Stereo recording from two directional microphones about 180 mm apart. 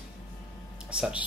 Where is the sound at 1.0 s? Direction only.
5° right (ahead or behind).